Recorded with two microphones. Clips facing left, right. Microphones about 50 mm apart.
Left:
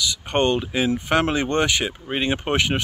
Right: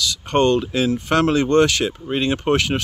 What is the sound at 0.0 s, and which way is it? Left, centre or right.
Speech, centre.